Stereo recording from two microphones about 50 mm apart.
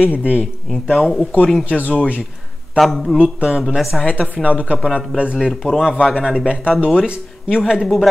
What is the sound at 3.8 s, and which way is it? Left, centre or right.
Speech, centre.